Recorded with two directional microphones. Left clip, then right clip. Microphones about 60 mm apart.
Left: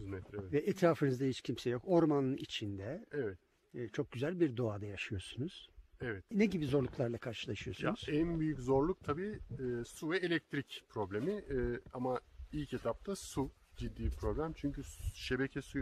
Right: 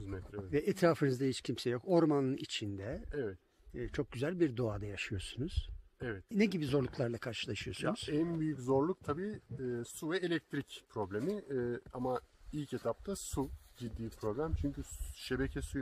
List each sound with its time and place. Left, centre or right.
0.0 s a sound: centre
0.5 s speech: centre
6.3 s speech: centre
8.5 s speech: centre
11.1 s speech: centre
12.0 s speech: right
13.4 s speech: centre
14.4 s speech: centre